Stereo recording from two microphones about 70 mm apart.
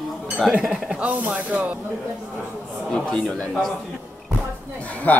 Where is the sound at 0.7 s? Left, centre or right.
Centre.